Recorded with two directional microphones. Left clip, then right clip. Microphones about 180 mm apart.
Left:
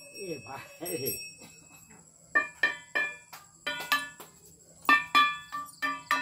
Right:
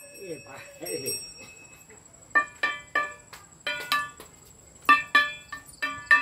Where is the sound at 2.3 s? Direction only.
10° right (ahead or behind).